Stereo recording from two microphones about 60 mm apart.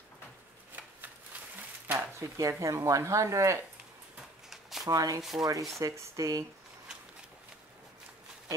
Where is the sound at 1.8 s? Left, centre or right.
Right.